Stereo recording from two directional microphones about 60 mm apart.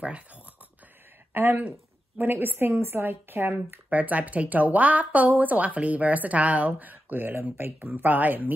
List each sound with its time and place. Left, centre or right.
0.0 s speech: right
1.3 s speech: right